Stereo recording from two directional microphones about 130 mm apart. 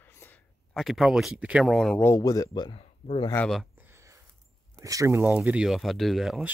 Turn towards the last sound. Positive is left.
turn(degrees=0)  # may be behind; listen again after turning